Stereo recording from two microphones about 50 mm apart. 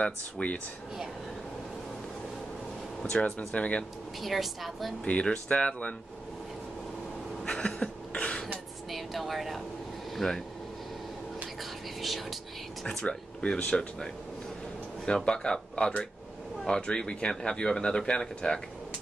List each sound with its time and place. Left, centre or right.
0.0 s speech: left
3.1 s speech: left
4.2 s a woman's voice: centre
5.0 s speech: left
7.4 s a sound: centre
8.9 s a sound: centre
10.1 s speech: centre
12.0 s a woman's voice: centre
12.8 s speech: left
15.0 s speech: centre